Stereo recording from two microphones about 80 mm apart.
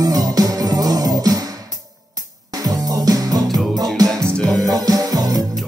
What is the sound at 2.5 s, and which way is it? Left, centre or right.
Music, right.